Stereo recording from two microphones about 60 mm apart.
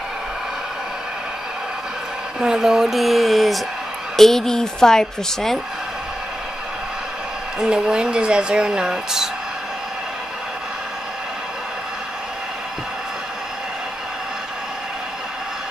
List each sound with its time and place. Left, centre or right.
2.4 s speech: centre
7.6 s speech: centre